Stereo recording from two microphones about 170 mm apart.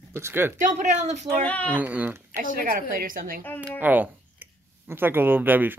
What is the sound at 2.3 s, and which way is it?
Speech, 55° right (ahead or behind).